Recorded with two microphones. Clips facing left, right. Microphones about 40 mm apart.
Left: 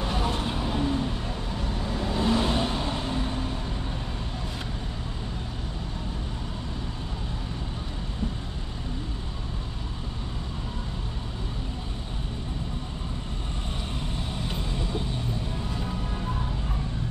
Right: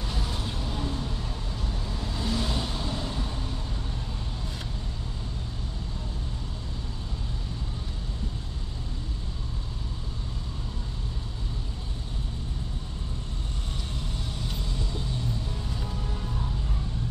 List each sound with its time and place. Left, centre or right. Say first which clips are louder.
0.0 s vehicle: left 6 dB; left
14.5 s vehicle: left 4 dB; left